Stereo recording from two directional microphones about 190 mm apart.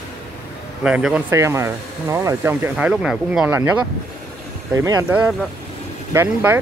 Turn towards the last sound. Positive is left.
turn(degrees=-10)  # may be behind; listen again after turning